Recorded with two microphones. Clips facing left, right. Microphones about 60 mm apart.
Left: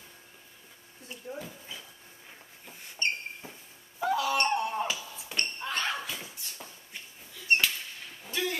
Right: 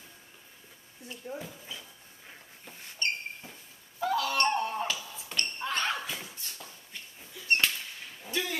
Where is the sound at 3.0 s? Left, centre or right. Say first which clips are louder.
Left 1 dB; left.